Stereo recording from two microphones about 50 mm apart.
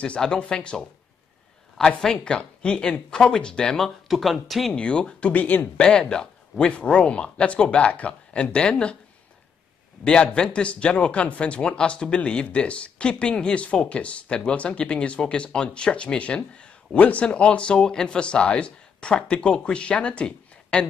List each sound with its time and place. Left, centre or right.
0.0 s speech: left
1.8 s speech: centre
2.2 s speech: centre
3.8 s speech: centre
4.7 s speech: left
5.3 s speech: left
5.8 s speech: centre
10.0 s speech: centre